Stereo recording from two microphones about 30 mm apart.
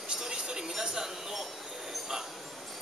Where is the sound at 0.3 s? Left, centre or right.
Right.